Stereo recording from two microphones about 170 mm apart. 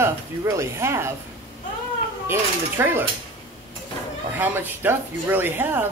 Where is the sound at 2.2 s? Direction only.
15° right (ahead or behind).